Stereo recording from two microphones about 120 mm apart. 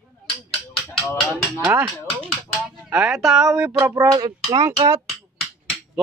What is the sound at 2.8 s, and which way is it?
Speech, 10° right (ahead or behind).